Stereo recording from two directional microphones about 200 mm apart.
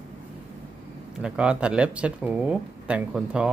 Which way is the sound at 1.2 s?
5° right (ahead or behind).